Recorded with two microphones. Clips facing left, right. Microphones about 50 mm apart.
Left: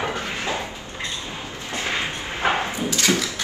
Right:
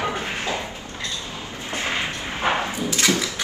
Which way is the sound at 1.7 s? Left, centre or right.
Right.